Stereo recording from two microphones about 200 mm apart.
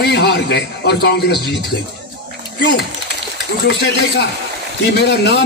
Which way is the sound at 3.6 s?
55° left (ahead or behind).